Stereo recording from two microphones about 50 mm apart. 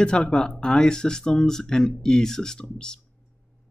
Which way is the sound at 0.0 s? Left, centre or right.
Centre.